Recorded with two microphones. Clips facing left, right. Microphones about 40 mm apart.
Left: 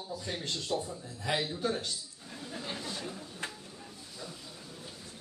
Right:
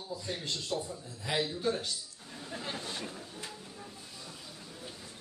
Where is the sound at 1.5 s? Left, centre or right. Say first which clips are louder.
Even; centre.